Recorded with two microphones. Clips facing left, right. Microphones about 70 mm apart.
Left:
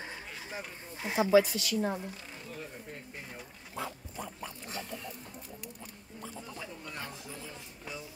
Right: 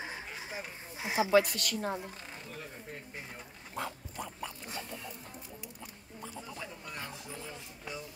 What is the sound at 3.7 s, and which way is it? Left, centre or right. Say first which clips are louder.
Dog: even; right.